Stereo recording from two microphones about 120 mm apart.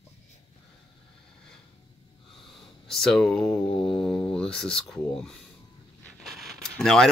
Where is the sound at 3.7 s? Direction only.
45° left (ahead or behind).